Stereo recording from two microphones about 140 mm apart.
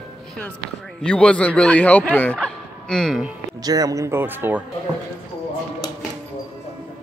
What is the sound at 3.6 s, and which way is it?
Speech, 25° right (ahead or behind).